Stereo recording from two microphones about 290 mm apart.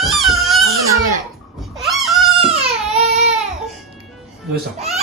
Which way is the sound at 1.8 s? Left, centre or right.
Centre.